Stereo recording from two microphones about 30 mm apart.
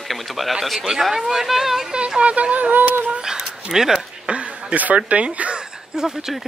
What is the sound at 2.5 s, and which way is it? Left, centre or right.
Speech, right.